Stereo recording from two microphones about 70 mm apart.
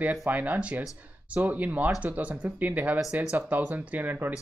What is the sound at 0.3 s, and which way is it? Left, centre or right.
Speech, right.